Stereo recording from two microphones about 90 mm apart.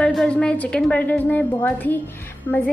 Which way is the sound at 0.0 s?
10° left (ahead or behind).